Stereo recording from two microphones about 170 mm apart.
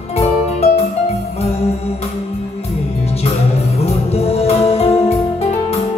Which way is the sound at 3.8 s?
35° left (ahead or behind).